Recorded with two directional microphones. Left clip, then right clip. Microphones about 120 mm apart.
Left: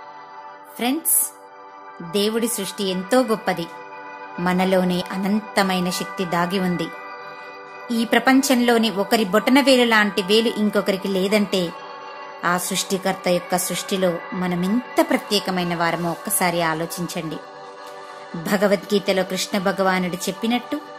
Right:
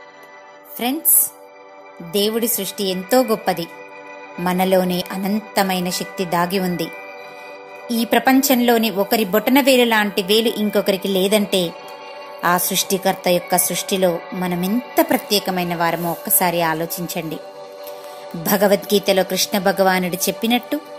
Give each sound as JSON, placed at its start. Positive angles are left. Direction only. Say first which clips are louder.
{"t": 0.8, "sound": "a woman's voice", "louder": "right 1 dB", "side_deg": -5}
{"t": 2.1, "sound": "speech", "louder": "right 2 dB", "side_deg": -10}
{"t": 7.9, "sound": "a woman's voice", "louder": "right 2 dB", "side_deg": -15}
{"t": 18.4, "sound": "a woman's voice", "louder": "right 3 dB", "side_deg": -25}